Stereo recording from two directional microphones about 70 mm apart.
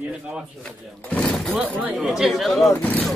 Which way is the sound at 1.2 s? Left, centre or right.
Centre.